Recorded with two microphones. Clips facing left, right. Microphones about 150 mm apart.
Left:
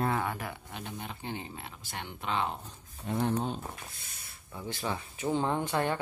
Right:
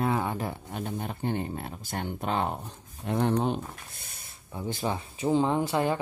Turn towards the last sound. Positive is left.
turn(degrees=-10)  # may be behind; listen again after turning